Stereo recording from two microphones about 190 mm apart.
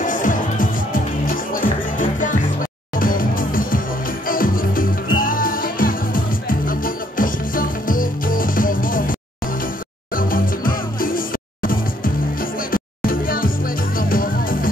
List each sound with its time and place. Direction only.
0.0 s music: 45° left (ahead or behind)
10.1 s music: 45° left (ahead or behind)